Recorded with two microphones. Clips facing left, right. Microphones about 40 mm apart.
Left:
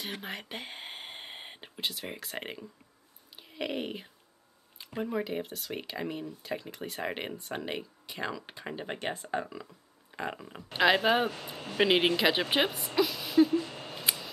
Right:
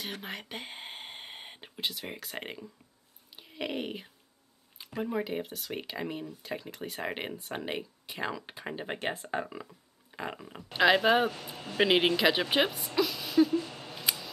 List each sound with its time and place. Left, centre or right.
0.0 s speech: centre
9.7 s speech: centre
11.2 s speech: centre
11.7 s speech: centre
13.7 s scissors: left
13.9 s scissors: centre